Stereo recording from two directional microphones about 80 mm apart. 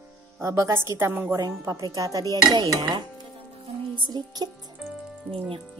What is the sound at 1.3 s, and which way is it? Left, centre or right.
Speech, right.